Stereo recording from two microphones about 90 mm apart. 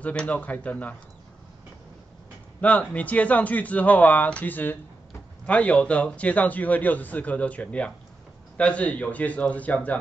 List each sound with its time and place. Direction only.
0.0 s a man's voice: 15° left (ahead or behind)
2.6 s a man's voice: 15° left (ahead or behind)